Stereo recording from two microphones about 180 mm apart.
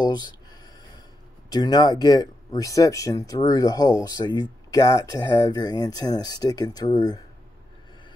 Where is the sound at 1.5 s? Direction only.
20° left (ahead or behind).